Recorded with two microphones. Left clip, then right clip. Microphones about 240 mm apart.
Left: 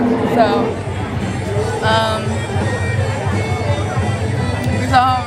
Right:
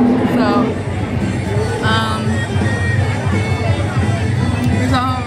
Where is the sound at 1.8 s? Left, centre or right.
Centre.